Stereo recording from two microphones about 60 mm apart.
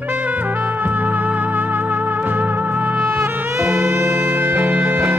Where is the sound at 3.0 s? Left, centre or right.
Right.